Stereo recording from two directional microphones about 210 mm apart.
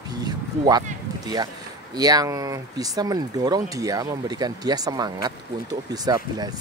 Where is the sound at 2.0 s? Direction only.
20° right (ahead or behind).